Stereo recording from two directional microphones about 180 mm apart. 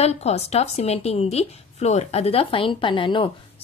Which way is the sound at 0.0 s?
35° left (ahead or behind).